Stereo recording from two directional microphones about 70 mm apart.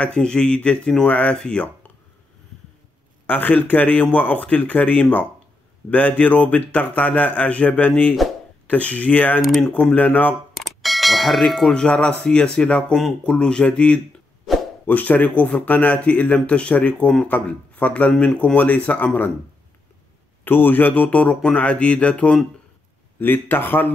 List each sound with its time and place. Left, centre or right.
0.0 s speech: centre
3.3 s speech: left
9.4 s speech: centre
9.9 s speech: left
10.6 s speech: centre; by 19.3 s left
20.4 s speech: left
23.1 s speech: left